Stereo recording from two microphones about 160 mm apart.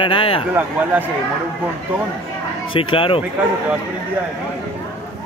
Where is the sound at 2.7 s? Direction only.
35° left (ahead or behind).